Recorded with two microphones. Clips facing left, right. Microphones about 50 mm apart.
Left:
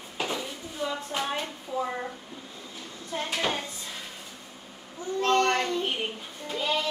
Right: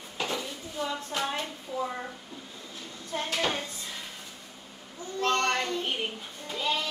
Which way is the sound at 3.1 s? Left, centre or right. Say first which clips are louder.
Even; centre.